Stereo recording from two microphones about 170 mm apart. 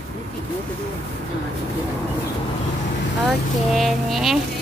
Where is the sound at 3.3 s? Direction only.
Centre (ahead or behind).